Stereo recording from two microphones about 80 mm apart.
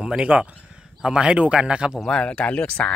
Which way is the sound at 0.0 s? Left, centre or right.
Centre.